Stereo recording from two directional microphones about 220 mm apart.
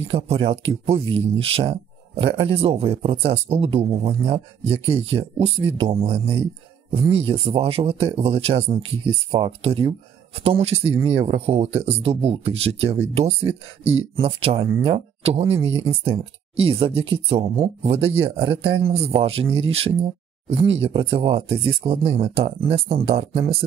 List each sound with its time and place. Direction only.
0.1 s speech: 25° right (ahead or behind)